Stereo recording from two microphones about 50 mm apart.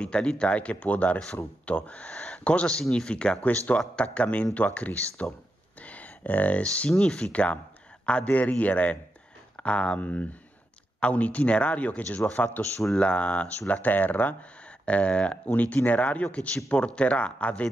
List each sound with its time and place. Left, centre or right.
0.0 s speech: left
2.7 s speech: centre
3.1 s speech: left
3.4 s speech: left
5.8 s a sound: left
7.0 s speech: centre
8.0 s speech: left
13.0 s speech: left